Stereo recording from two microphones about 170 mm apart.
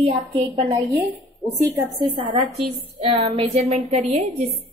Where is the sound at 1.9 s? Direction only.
35° right (ahead or behind).